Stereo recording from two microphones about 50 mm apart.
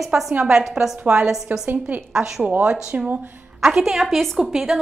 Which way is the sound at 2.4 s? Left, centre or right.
Right.